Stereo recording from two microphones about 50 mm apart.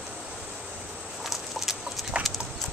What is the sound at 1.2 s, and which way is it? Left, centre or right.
Chicken, centre.